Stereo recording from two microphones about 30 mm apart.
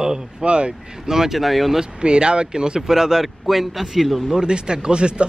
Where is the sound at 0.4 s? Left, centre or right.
Right.